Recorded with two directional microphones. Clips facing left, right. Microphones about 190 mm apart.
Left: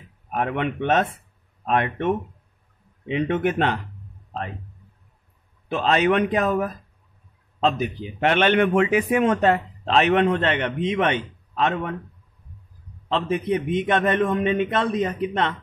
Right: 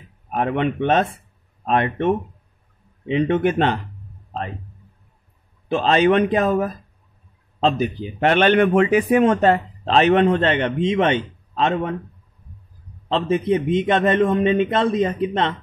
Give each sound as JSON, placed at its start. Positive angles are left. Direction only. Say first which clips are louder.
{"t": 0.3, "sound": "a man's voice", "louder": "right 4 dB", "side_deg": -30}
{"t": 5.7, "sound": "a man's voice", "louder": "right 4 dB", "side_deg": -30}
{"t": 13.1, "sound": "a man's voice", "louder": "right 4 dB", "side_deg": -25}